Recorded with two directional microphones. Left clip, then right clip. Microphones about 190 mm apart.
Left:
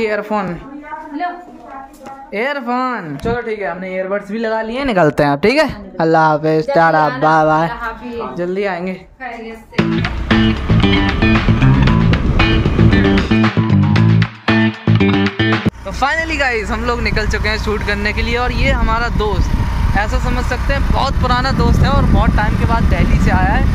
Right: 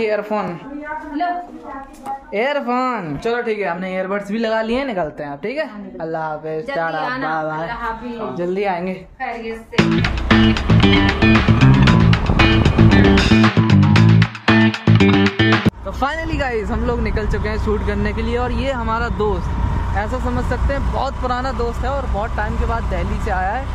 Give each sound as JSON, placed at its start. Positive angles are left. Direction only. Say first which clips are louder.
{"t": 0.0, "sound": "speech", "louder": "left 2 dB", "side_deg": 25}
{"t": 2.3, "sound": "speech", "louder": "left 1 dB", "side_deg": 10}
{"t": 3.4, "sound": "speech", "louder": "even", "side_deg": -5}
{"t": 4.8, "sound": "a woman's voice", "louder": "left 10 dB", "side_deg": 60}
{"t": 8.4, "sound": "speech", "louder": "left 1 dB", "side_deg": 10}
{"t": 9.8, "sound": "music", "louder": "even", "side_deg": 0}
{"t": 16.0, "sound": "speech", "louder": "left 6 dB", "side_deg": -15}
{"t": 21.0, "sound": "speech", "louder": "left 7 dB", "side_deg": -15}